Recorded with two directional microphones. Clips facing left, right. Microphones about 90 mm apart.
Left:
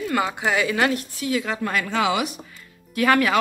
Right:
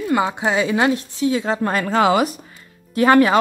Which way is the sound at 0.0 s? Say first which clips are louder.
Right 4 dB; 20° right (ahead or behind).